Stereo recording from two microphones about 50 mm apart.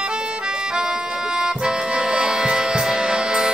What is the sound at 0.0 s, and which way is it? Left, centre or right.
Accordion, centre.